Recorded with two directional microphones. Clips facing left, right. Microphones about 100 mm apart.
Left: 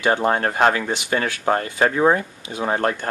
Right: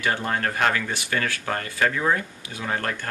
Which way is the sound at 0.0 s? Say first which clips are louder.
Left 6 dB; 25° left (ahead or behind).